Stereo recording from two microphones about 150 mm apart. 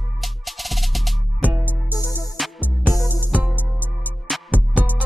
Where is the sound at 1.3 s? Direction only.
10° right (ahead or behind).